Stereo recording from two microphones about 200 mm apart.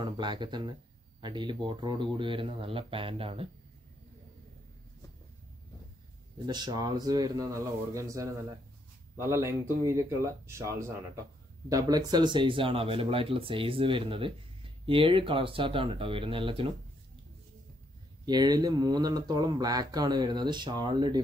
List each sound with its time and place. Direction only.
0.0 s speech: 25° right (ahead or behind)
6.4 s speech: 20° right (ahead or behind)
18.2 s speech: 20° right (ahead or behind)